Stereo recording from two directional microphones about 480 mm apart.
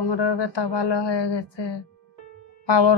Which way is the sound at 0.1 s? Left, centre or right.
Left.